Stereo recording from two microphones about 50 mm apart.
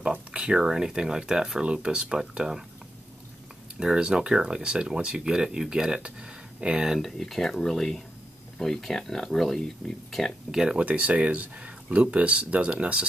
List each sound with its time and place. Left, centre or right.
0.3 s speech: centre
3.8 s speech: centre
7.0 s speech: centre
10.5 s speech: centre
10.8 s speech: right